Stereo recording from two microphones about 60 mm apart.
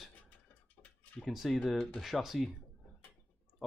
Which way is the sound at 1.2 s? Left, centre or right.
Centre.